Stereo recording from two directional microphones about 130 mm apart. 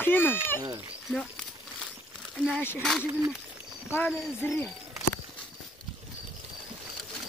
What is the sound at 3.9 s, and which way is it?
Speech, 15° left (ahead or behind).